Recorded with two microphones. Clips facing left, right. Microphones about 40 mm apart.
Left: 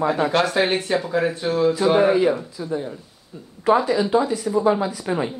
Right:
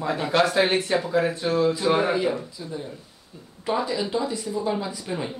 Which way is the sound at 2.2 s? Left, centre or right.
Left.